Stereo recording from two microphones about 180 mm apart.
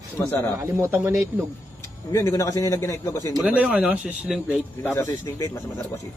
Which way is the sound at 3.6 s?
10° right (ahead or behind).